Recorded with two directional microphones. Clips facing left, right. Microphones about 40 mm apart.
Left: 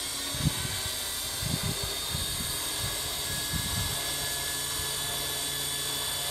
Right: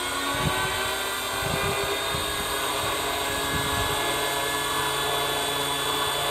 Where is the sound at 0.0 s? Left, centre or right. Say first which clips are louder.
Right 8 dB; right.